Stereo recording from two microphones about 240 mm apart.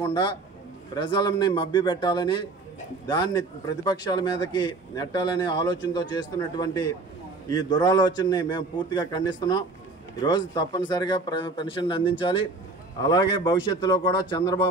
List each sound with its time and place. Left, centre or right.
0.0 s a man's voice: centre